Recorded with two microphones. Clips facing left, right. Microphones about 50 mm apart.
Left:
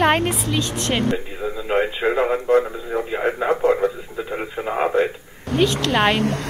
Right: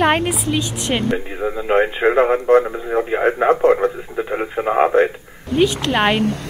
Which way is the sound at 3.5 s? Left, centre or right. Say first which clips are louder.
Right 3 dB; right.